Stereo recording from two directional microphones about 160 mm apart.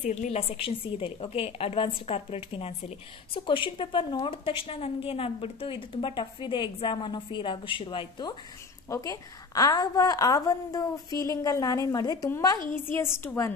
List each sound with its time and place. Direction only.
0.0 s a woman's voice: 45° left (ahead or behind); by 8.4 s 30° left (ahead or behind)
8.8 s a woman's voice: 20° left (ahead or behind)